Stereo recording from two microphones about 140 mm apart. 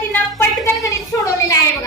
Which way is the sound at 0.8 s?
25° left (ahead or behind).